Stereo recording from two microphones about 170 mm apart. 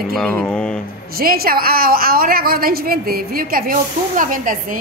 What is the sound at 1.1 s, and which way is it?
A woman's voice, 60° right (ahead or behind).